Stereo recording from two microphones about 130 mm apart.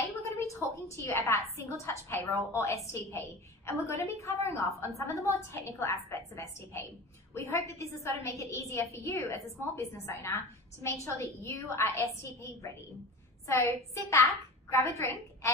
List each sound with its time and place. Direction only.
0.2 s a woman's voice: 25° left (ahead or behind)